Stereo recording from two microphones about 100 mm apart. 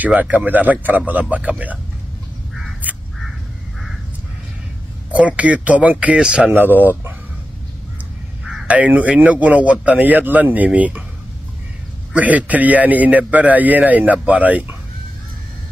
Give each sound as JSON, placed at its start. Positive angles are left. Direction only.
{"t": 0.0, "sound": "a man's voice", "side_deg": -15}
{"t": 5.1, "sound": "a man's voice", "side_deg": -15}
{"t": 6.5, "sound": "speech", "side_deg": -20}
{"t": 8.6, "sound": "a man's voice", "side_deg": -15}
{"t": 12.1, "sound": "a man's voice", "side_deg": -15}